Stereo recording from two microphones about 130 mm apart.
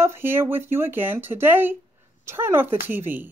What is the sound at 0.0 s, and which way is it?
A woman's voice, 20° right (ahead or behind).